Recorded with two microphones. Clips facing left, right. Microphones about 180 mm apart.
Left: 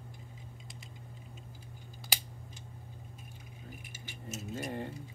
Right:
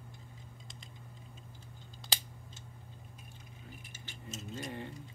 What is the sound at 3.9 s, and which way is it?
Keys jangling, 10° left (ahead or behind).